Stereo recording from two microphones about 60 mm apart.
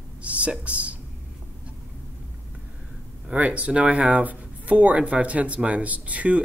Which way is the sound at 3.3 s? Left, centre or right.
Right.